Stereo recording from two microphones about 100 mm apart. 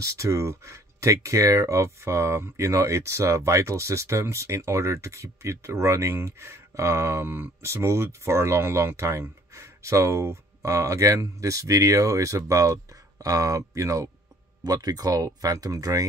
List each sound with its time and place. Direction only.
0.0 s speech: 30° right (ahead or behind)